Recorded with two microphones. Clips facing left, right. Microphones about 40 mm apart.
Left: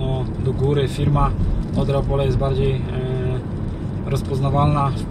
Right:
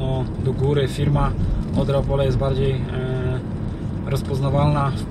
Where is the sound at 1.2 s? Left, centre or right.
Left.